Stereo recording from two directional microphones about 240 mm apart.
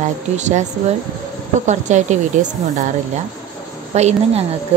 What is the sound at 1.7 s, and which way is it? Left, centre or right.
Speech, right.